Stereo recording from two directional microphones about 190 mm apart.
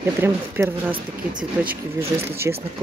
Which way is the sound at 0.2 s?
10° right (ahead or behind).